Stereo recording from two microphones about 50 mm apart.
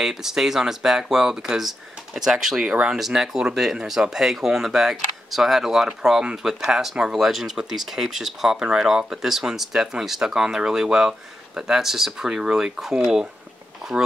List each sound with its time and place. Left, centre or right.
0.0 s speech: centre
2.6 s speech: right
2.9 s speech: centre